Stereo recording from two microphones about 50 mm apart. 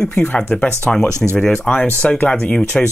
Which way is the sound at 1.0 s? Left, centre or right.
Right.